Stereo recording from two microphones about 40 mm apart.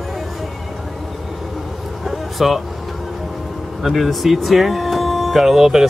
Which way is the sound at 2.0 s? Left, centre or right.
Centre.